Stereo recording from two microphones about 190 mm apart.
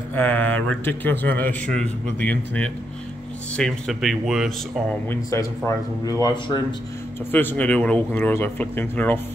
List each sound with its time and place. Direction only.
0.1 s speech: 10° left (ahead or behind)
5.1 s speech: 15° left (ahead or behind)
7.3 s speech: 10° left (ahead or behind)